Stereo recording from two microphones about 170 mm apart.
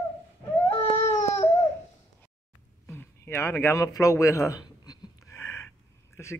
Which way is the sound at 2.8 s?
15° left (ahead or behind).